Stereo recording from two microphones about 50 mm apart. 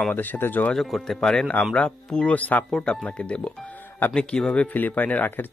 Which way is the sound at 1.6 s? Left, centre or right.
Centre.